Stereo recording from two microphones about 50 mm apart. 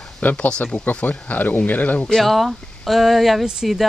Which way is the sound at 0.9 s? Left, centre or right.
Left.